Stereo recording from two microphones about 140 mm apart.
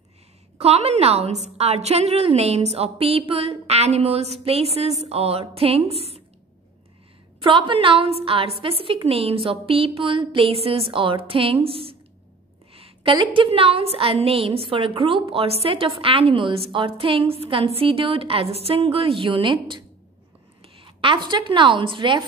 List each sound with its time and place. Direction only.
0.6 s a woman's voice: 50° right (ahead or behind)
7.4 s a woman's voice: 35° right (ahead or behind)